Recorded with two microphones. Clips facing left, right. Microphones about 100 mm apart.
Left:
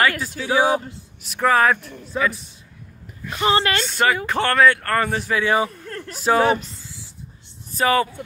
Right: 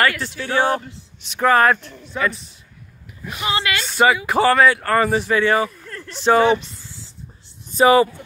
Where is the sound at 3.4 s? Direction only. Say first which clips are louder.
Left 4 dB; 40° left (ahead or behind).